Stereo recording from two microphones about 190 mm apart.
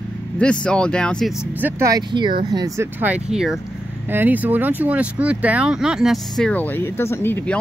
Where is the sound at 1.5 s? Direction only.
10° right (ahead or behind).